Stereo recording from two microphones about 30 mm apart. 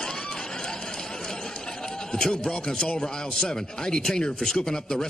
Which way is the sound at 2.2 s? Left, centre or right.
Left.